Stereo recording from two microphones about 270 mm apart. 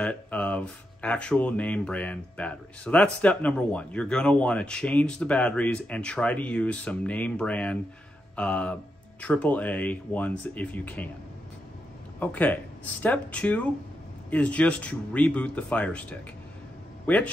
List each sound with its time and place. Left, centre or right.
0.0 s speech: centre
12.2 s speech: centre